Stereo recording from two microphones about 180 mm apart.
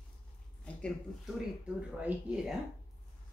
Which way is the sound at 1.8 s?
5° right (ahead or behind).